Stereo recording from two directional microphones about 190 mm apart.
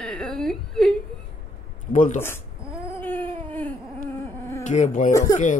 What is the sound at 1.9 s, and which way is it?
Speech, 45° left (ahead or behind).